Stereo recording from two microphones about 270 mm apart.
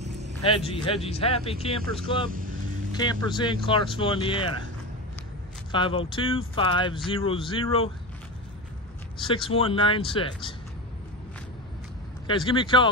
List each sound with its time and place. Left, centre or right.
0.0 s a sound: right
0.7 s speech: left
1.8 s speech: centre
2.9 s speech: centre
5.7 s speech: centre
9.2 s speech: centre
12.3 s speech: centre